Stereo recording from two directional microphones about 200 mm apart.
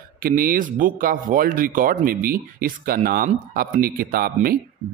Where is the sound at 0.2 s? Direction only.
45° right (ahead or behind).